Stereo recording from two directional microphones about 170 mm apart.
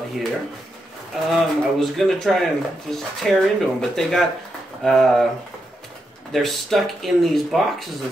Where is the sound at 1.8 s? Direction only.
Centre (ahead or behind).